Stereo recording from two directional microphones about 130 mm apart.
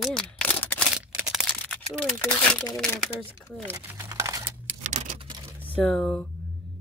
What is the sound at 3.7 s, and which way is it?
Speech, 15° right (ahead or behind).